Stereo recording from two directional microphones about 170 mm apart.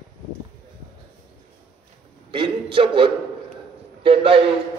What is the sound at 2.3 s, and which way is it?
A man's voice, 30° right (ahead or behind).